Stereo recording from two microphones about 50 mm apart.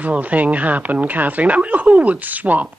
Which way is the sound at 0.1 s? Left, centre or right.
Right.